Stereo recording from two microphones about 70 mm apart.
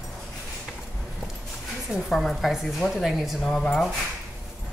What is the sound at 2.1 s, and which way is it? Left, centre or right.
Speech, centre.